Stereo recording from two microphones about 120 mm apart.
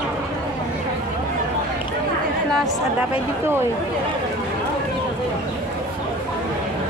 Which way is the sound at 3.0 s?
20° right (ahead or behind).